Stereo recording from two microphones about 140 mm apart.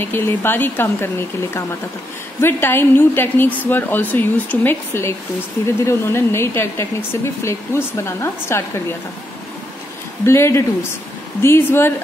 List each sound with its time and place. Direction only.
0.0 s a woman's voice: 15° left (ahead or behind)
10.2 s a woman's voice: 20° left (ahead or behind)